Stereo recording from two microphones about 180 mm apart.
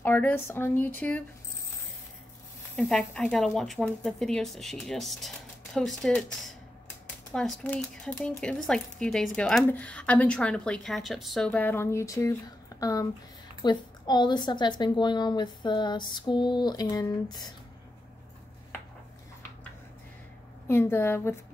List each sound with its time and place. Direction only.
0.0 s speech: 10° left (ahead or behind)
2.7 s speech: 5° left (ahead or behind)
7.3 s speech: 5° left (ahead or behind)
13.6 s a woman's voice: 25° left (ahead or behind)
20.6 s speech: 15° left (ahead or behind)